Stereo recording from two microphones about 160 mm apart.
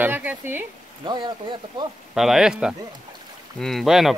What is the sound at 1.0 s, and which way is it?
Speech, 30° right (ahead or behind).